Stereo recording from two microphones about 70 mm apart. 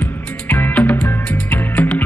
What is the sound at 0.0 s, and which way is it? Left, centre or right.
Music, left.